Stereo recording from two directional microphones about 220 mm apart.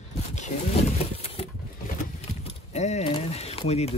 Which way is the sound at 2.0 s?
30° left (ahead or behind).